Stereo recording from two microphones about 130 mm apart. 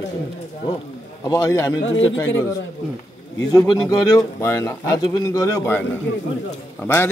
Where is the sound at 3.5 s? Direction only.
30° left (ahead or behind).